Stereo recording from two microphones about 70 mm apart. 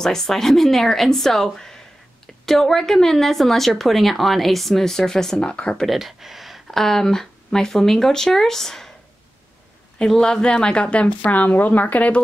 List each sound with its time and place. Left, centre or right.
0.0 s a woman's voice: centre
5.9 s speech: centre
10.0 s a woman's voice: centre